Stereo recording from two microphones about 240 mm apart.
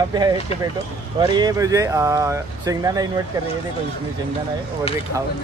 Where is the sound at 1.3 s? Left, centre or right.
Centre.